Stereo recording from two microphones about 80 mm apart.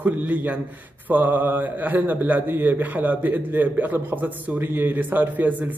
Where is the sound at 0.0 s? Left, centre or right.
Centre.